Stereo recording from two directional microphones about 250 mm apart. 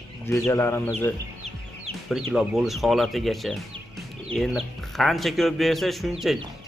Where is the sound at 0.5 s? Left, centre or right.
Centre.